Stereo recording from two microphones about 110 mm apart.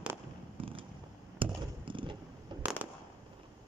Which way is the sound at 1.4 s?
50° right (ahead or behind).